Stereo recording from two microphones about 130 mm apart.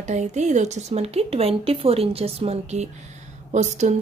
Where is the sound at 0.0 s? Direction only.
60° right (ahead or behind).